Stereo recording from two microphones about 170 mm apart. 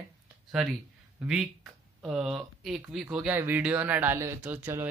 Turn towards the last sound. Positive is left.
turn(degrees=-10)  # may be behind; listen again after turning